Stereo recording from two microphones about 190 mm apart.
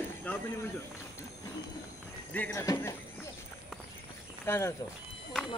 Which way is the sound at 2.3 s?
10° left (ahead or behind).